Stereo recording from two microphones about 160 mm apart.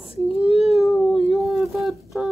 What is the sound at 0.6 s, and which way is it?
Cat, centre (ahead or behind).